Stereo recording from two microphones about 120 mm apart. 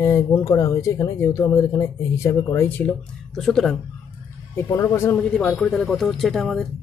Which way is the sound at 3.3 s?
5° left (ahead or behind).